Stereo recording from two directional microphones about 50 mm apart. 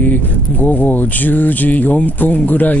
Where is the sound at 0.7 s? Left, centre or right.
Left.